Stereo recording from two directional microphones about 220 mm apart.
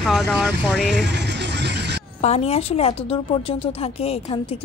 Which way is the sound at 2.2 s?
30° left (ahead or behind).